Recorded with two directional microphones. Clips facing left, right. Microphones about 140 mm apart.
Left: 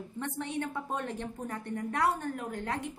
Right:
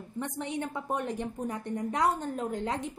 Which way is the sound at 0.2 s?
15° right (ahead or behind).